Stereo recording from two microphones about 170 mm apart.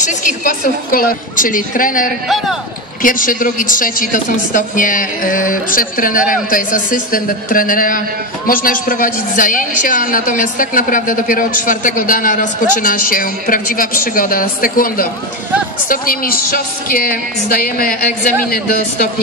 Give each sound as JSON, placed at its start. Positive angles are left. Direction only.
{"t": 0.0, "sound": "a woman's voice", "side_deg": 50}
{"t": 2.2, "sound": "a man's voice", "side_deg": 0}
{"t": 3.0, "sound": "a woman's voice", "side_deg": 50}